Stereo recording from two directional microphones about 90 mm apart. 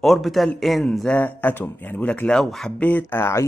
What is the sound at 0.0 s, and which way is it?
Speech, centre (ahead or behind).